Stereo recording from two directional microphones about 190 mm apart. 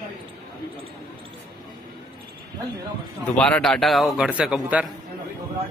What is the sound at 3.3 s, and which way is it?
A man's voice, 5° left (ahead or behind).